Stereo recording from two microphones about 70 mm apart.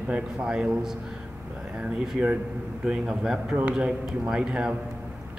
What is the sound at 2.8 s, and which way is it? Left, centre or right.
A man's voice, centre.